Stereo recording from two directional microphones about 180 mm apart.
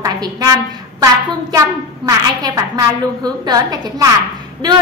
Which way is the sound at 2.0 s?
20° right (ahead or behind).